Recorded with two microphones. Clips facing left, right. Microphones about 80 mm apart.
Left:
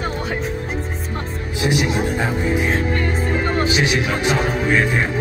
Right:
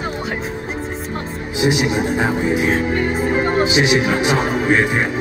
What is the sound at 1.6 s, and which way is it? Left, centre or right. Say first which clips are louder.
Speech: right 2 dB; centre.